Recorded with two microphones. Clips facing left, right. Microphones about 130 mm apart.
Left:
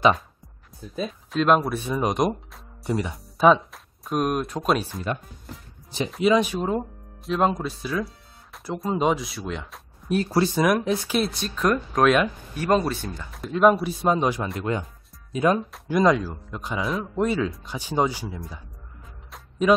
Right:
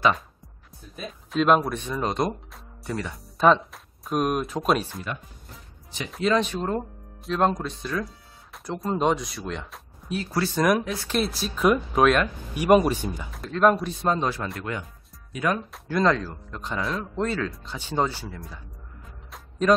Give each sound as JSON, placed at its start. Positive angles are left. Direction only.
{"t": 1.3, "sound": "speech", "side_deg": 0}
{"t": 3.3, "sound": "speech", "side_deg": 5}
{"t": 6.2, "sound": "speech", "side_deg": 10}
{"t": 10.0, "sound": "speech", "side_deg": 45}
{"t": 10.5, "sound": "speech", "side_deg": 10}
{"t": 10.8, "sound": "speech", "side_deg": 20}
{"t": 11.1, "sound": "speech", "side_deg": 0}
{"t": 13.3, "sound": "speech", "side_deg": 5}